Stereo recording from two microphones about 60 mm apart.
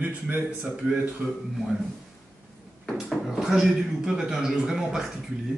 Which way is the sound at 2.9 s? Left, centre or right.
Centre.